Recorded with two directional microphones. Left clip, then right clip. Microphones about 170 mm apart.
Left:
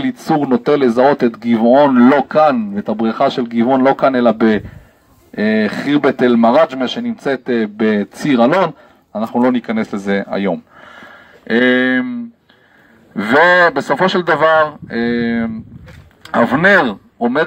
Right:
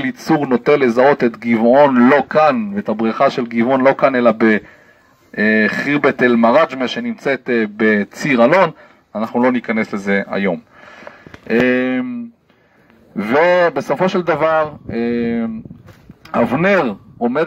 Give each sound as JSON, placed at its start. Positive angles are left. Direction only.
{"t": 0.2, "sound": "a man's voice", "side_deg": -30}
{"t": 5.5, "sound": "a man's voice", "side_deg": -30}
{"t": 5.9, "sound": "a man's voice", "side_deg": -20}
{"t": 11.4, "sound": "a man's voice", "side_deg": -40}